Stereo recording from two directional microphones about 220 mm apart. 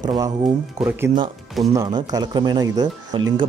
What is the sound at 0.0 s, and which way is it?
Speech, 20° right (ahead or behind).